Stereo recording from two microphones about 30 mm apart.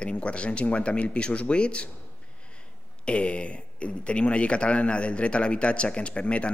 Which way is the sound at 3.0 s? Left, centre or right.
Left.